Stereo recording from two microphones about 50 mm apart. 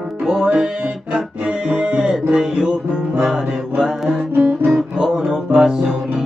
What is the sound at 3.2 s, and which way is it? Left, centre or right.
Mantra, centre.